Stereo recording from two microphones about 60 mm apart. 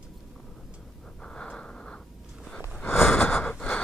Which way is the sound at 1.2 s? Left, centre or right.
Centre.